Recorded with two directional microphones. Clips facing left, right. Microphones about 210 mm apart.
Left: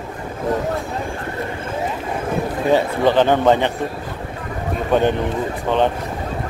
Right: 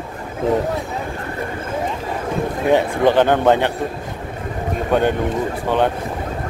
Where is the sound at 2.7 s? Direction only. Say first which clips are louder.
Right 1 dB; 15° right (ahead or behind).